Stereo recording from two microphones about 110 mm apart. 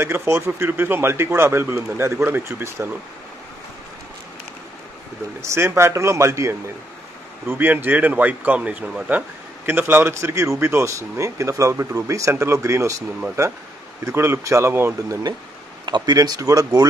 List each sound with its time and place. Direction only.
0.0 s speech: 25° right (ahead or behind)
5.4 s speech: 25° right (ahead or behind)
14.0 s speech: 25° right (ahead or behind)
15.8 s speech: 40° right (ahead or behind)